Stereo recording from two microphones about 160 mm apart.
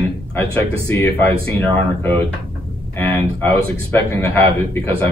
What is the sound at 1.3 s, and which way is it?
Speech, 35° right (ahead or behind).